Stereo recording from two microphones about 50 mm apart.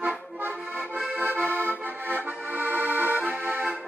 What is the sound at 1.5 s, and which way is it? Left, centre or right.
Accordion, right.